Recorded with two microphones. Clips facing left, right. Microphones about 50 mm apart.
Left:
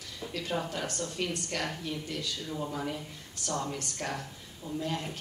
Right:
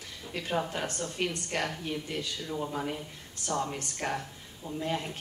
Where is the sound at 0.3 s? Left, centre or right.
Right.